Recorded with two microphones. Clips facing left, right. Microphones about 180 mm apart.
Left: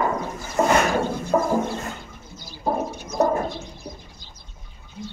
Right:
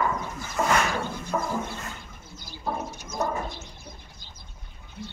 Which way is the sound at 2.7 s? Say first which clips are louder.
Left 7 dB; 40° left (ahead or behind).